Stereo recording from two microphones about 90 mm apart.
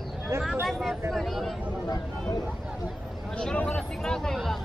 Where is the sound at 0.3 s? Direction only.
30° right (ahead or behind).